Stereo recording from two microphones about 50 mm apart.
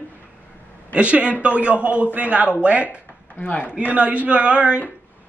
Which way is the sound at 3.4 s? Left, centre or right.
Left.